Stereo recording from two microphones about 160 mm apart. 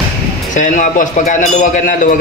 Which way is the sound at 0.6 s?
55° left (ahead or behind).